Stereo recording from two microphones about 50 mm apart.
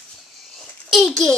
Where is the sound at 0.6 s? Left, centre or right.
Centre.